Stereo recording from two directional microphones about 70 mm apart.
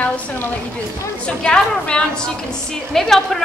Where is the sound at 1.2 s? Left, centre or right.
Centre.